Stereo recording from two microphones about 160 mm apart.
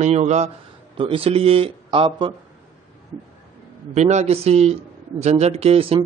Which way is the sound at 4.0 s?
45° right (ahead or behind).